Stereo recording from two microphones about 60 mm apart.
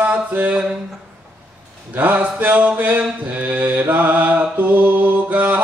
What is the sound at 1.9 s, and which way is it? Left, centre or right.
Mantra, right.